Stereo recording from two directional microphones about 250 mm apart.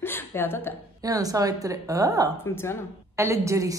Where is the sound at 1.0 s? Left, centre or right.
Centre.